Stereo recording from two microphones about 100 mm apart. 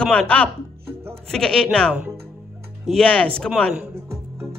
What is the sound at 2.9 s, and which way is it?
Speech, 10° left (ahead or behind).